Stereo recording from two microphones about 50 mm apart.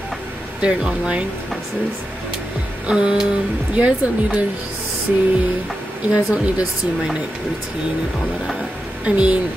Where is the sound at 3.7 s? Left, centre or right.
Right.